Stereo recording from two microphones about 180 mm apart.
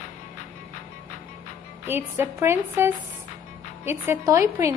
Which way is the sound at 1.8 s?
10° right (ahead or behind).